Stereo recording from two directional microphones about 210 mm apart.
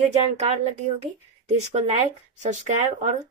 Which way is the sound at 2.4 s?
35° right (ahead or behind).